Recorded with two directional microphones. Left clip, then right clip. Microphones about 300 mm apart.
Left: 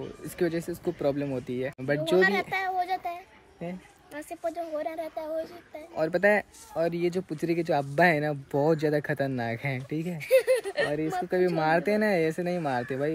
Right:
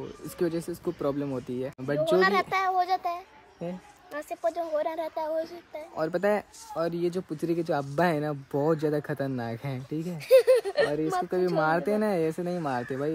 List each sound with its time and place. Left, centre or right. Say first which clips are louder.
0.8 s speech: left 2 dB; centre
2.2 s a sound: right 2 dB; right
3.6 s a woman's voice: right 2 dB; centre
5.9 s speech: left 3 dB; centre
10.1 s speech: right 4 dB; centre